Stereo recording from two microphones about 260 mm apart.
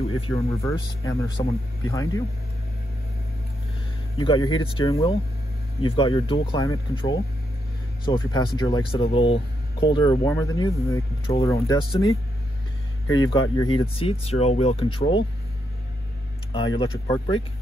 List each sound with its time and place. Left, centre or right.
0.1 s speech: left
4.2 s speech: centre
13.0 s speech: centre
16.5 s speech: centre